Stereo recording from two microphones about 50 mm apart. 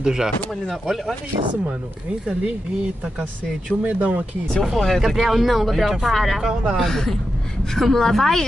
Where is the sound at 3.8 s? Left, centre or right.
Right.